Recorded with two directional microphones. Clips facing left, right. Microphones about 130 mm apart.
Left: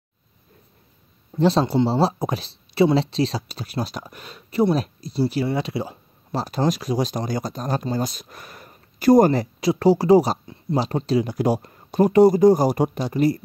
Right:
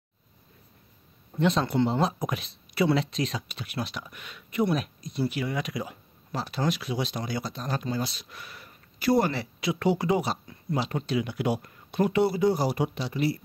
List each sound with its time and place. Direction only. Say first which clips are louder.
1.4 s speech: left 6 dB; 35° left (ahead or behind)
10.4 s speech: left 6 dB; 25° left (ahead or behind); by 13.4 s 45° left (ahead or behind)